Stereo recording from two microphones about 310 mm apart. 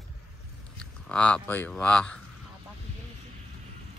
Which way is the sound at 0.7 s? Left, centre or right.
Centre.